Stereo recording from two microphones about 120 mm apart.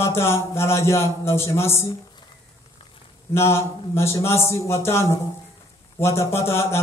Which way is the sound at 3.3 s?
20° left (ahead or behind).